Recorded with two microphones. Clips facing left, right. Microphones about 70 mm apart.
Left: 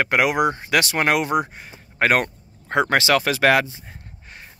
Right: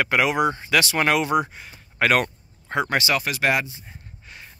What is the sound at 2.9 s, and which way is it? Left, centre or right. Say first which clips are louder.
Speech: left 6 dB; left.